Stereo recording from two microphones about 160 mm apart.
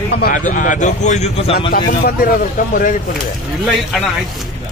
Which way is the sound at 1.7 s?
65° left (ahead or behind).